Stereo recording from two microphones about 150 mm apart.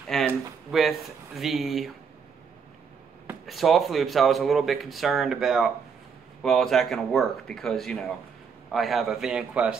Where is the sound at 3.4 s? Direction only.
Centre (ahead or behind).